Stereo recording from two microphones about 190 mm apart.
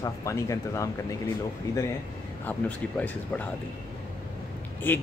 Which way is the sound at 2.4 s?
10° left (ahead or behind).